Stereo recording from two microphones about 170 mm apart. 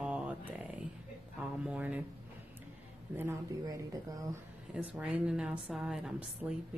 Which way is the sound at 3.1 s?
15° right (ahead or behind).